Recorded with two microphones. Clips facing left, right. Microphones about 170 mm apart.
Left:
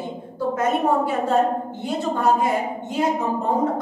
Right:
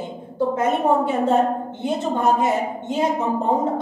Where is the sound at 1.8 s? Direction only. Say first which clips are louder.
Right 1 dB; 25° right (ahead or behind).